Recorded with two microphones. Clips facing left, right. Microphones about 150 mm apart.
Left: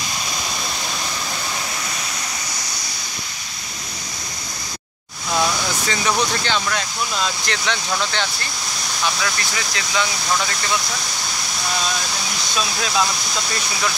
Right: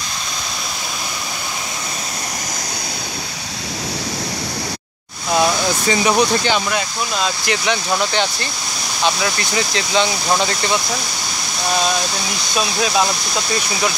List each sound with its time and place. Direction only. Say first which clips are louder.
5.3 s speech: right 5 dB; 20° right (ahead or behind)
9.0 s speech: right 5 dB; 25° right (ahead or behind)
12.5 s speech: right 4 dB; 20° right (ahead or behind)